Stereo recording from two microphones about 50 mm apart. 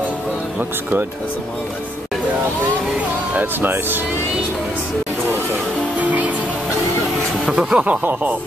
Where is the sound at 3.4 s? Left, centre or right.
Right.